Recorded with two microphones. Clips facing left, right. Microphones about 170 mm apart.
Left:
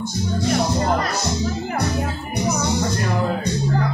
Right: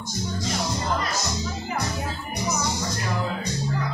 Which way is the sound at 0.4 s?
55° left (ahead or behind).